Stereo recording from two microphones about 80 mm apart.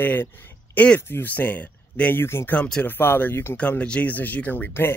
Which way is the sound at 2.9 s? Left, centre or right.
Left.